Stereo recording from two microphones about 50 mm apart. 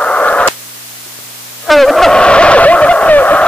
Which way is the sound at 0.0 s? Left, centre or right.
Left.